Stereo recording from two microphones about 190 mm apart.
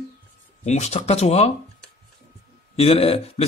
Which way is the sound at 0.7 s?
35° left (ahead or behind).